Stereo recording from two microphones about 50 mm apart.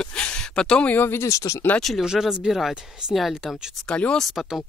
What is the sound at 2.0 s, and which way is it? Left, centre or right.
Speech, centre.